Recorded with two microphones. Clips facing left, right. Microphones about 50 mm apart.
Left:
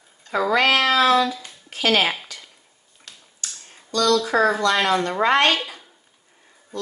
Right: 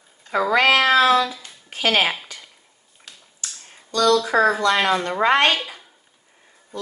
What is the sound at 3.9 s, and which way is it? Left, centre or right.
Speech, right.